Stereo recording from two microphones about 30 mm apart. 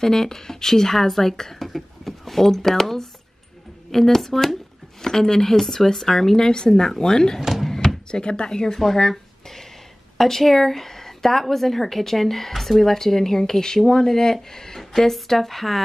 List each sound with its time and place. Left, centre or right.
0.0 s a woman's voice: centre
5.0 s a woman's voice: centre
9.1 s a sound: centre
10.1 s a woman's voice: centre